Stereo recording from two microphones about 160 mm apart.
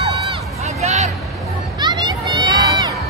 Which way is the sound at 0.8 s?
45° right (ahead or behind).